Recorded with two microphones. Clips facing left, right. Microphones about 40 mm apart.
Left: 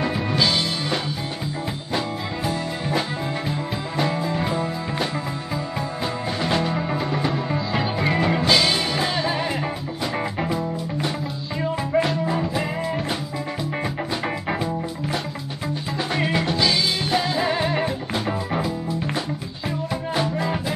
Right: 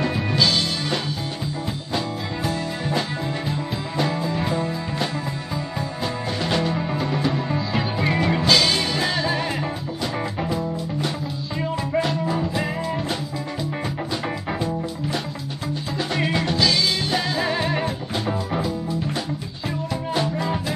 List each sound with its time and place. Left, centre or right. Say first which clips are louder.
0.0 s music: even; centre
3.9 s music: even; centre
6.4 s music: even; centre
16.2 s music: even; centre
20.2 s music: even; centre